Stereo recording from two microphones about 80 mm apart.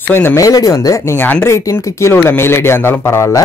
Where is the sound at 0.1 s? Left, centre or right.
Left.